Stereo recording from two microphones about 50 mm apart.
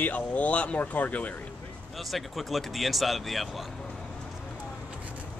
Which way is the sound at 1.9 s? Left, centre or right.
Centre.